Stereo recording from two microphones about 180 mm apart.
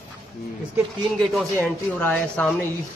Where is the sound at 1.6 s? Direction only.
10° left (ahead or behind).